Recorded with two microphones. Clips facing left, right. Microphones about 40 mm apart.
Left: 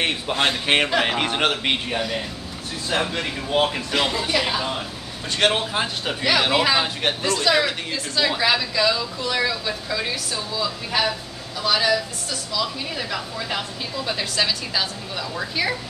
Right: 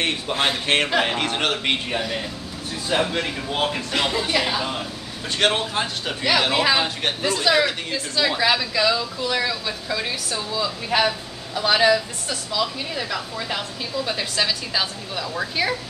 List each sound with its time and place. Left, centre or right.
0.0 s speech: centre
11.6 s a woman's voice: right
12.6 s a woman's voice: centre
12.9 s speech: centre